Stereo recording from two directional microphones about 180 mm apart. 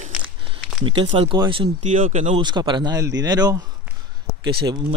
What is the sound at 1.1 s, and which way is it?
Speech, 25° right (ahead or behind).